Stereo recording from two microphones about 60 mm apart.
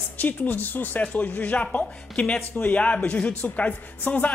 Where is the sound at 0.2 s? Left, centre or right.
Left.